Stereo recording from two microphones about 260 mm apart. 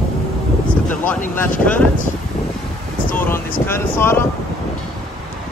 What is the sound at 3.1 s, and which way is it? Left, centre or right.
Speech, centre.